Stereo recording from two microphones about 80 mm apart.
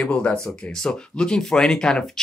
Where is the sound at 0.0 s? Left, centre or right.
Centre.